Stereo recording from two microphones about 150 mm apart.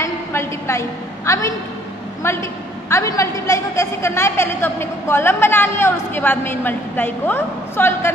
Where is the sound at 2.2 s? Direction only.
20° left (ahead or behind).